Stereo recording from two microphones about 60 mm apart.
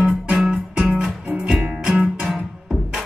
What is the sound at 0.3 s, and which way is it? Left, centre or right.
Music, centre.